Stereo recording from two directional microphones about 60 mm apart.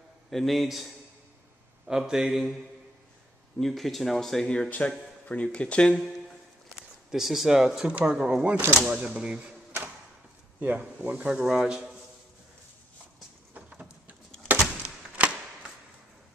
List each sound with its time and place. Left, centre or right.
0.3 s speech: centre
3.5 s speech: centre
4.5 s speech: centre
7.1 s speech: centre
10.6 s speech: right
11.3 s speech: centre
13.6 s a sound: right